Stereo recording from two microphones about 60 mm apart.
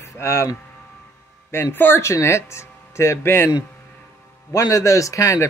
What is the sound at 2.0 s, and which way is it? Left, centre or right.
Speech, left.